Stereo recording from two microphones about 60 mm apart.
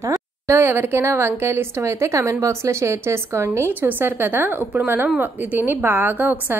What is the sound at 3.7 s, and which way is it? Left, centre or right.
A woman's voice, right.